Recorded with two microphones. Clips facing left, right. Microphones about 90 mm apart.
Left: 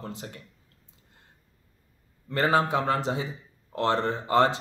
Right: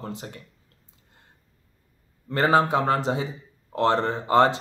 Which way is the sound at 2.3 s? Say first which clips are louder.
Right 3 dB; 35° right (ahead or behind).